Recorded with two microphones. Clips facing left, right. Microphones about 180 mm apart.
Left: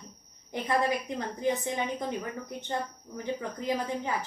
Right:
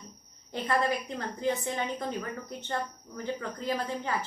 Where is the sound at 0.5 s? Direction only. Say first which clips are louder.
Left 1 dB; 15° left (ahead or behind).